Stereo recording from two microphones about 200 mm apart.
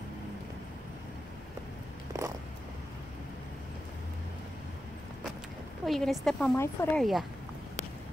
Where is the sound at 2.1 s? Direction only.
15° right (ahead or behind).